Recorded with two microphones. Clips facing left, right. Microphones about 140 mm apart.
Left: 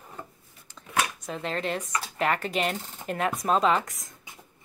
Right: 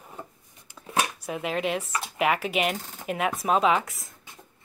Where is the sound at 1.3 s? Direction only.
10° right (ahead or behind).